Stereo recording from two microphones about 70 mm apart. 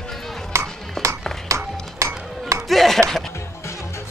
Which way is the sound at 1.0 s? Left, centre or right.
Centre.